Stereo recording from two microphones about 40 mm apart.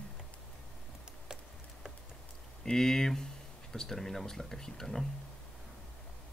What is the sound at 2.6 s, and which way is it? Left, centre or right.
Speech, centre.